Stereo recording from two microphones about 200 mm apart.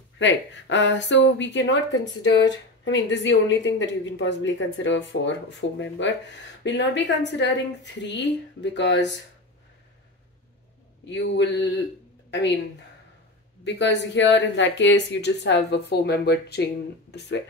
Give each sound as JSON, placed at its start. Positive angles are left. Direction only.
{"t": 0.2, "sound": "a woman's voice", "side_deg": 65}
{"t": 11.1, "sound": "a woman's voice", "side_deg": 65}
{"t": 13.7, "sound": "a woman's voice", "side_deg": 65}